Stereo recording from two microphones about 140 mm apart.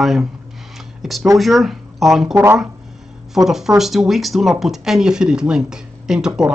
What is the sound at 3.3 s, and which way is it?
Speech, centre (ahead or behind).